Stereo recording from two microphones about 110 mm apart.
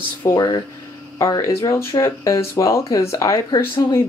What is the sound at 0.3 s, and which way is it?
Speech, 35° left (ahead or behind).